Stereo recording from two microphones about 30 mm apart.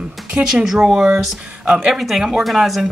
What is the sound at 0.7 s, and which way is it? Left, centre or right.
Speech, centre.